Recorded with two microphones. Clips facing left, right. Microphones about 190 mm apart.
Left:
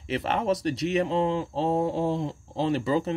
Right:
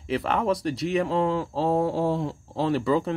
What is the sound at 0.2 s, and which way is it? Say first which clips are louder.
Speech: left 1 dB; 25° left (ahead or behind).